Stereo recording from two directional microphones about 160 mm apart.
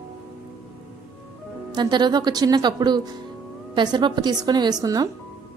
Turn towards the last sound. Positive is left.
turn(degrees=-25)  # may be behind; listen again after turning